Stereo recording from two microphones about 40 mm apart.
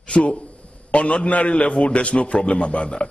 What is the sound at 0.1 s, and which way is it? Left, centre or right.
A man's voice, left.